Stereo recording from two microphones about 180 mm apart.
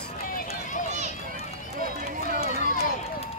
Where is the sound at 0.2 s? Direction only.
55° left (ahead or behind).